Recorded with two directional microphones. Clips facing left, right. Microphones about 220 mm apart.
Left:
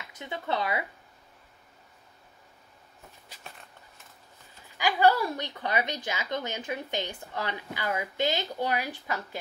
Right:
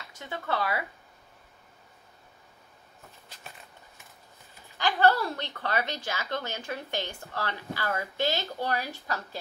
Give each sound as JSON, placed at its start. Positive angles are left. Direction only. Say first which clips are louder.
{"t": 0.1, "sound": "speech", "louder": "left 1 dB", "side_deg": 20}
{"t": 4.7, "sound": "a woman's voice", "louder": "left 1 dB", "side_deg": 10}